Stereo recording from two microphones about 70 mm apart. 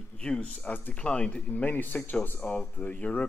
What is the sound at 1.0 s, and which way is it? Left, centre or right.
Speech, centre.